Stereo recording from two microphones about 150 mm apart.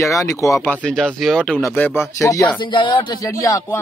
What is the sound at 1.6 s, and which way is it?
Speech, 15° left (ahead or behind).